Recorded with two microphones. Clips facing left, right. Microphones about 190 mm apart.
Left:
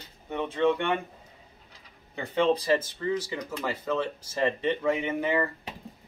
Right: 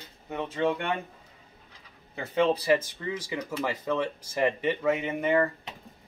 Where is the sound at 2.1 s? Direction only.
10° right (ahead or behind).